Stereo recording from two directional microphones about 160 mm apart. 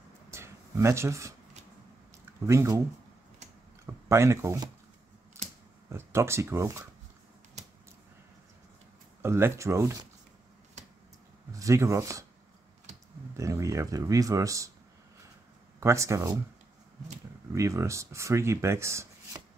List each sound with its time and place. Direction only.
0.3 s a sound: 15° right (ahead or behind)
2.4 s speech: 20° right (ahead or behind)
3.8 s speech: 15° right (ahead or behind)
5.9 s speech: 15° right (ahead or behind)
9.2 s speech: 15° right (ahead or behind)
11.5 s speech: 20° right (ahead or behind)
13.4 s speech: 20° right (ahead or behind)
15.8 s speech: 20° right (ahead or behind)
17.5 s speech: 20° right (ahead or behind)